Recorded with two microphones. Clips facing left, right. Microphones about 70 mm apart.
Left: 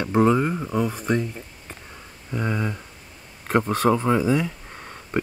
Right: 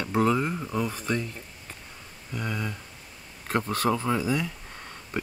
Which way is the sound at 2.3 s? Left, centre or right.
Left.